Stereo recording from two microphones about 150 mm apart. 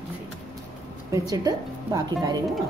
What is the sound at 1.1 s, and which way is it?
Speech, 25° right (ahead or behind).